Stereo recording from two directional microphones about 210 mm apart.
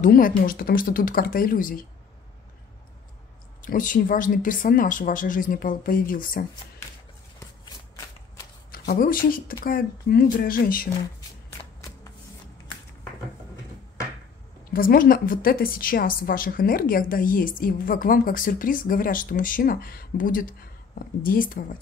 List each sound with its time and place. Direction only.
0.0 s a woman's voice: 40° left (ahead or behind)
3.6 s speech: 40° left (ahead or behind)
7.3 s shuffling cards: 15° left (ahead or behind)
8.7 s a woman's voice: 45° left (ahead or behind)
11.1 s shuffling cards: 15° left (ahead or behind)
14.6 s a woman's voice: 45° left (ahead or behind)